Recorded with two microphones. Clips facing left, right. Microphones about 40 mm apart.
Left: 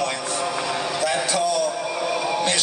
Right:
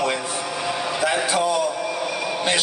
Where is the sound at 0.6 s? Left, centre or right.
Centre.